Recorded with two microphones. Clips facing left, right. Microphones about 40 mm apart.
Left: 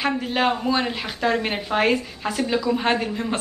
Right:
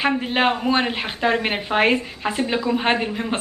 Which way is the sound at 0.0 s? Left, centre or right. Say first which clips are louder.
Right 2 dB; right.